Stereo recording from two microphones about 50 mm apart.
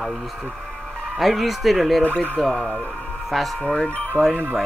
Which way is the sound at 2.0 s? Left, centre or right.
Left.